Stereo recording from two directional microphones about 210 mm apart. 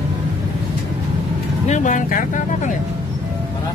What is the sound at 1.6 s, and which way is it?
Speech, 35° left (ahead or behind).